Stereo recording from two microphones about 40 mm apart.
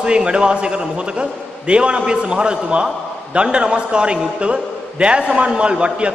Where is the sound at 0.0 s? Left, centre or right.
Right.